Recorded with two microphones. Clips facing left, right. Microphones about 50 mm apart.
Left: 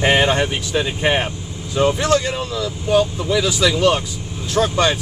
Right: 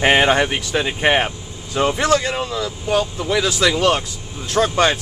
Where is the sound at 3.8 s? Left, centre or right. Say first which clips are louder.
Left 1 dB; centre.